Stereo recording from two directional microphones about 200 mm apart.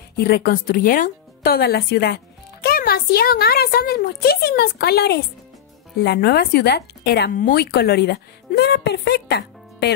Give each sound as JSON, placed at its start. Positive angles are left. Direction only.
{"t": 0.1, "sound": "speech", "side_deg": 50}